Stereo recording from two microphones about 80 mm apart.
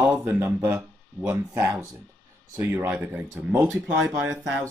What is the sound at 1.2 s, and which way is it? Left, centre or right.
Speech, right.